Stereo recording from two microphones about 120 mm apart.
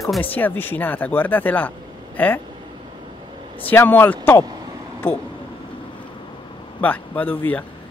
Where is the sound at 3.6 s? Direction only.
15° left (ahead or behind).